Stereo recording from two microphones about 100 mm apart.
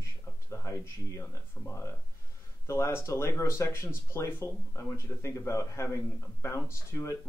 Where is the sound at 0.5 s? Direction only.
30° left (ahead or behind).